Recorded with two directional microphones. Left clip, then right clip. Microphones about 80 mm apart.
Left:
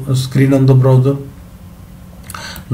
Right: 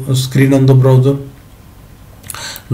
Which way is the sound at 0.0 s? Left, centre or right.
Centre.